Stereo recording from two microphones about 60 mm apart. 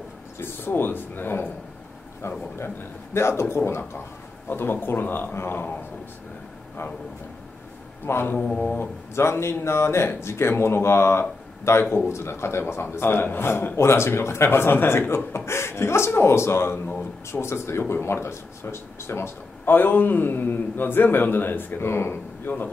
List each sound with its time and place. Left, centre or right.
0.4 s a man's voice: left
8.0 s speech: left
8.4 s mantra: centre
8.7 s a man's voice: left